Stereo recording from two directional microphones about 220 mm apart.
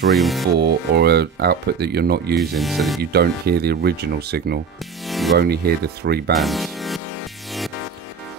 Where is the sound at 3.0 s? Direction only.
45° right (ahead or behind).